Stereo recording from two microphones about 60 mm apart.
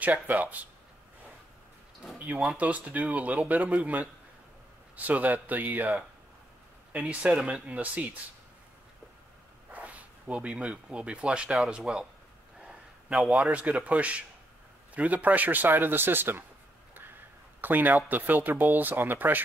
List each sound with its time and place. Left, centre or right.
0.0 s speech: right
2.1 s a sound: right
2.5 s speech: right
6.9 s speech: right
9.7 s speech: right
12.6 s a sound: centre
13.5 s speech: right
17.6 s speech: right